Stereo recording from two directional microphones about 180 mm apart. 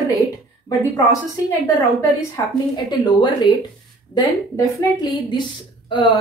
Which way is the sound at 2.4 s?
20° left (ahead or behind).